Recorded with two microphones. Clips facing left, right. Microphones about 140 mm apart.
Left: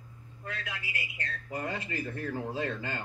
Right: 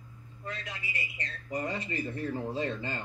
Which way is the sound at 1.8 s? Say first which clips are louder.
Right 1 dB; 25° right (ahead or behind).